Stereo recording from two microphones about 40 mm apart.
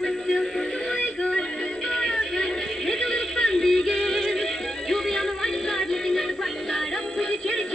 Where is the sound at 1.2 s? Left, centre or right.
Centre.